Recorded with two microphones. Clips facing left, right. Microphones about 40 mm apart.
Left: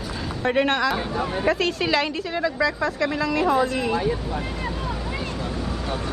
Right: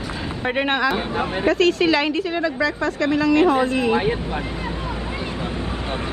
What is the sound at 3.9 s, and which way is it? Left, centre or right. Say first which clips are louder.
Speech: right 3 dB; right.